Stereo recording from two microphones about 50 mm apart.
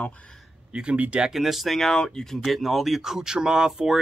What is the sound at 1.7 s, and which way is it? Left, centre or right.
Speech, centre.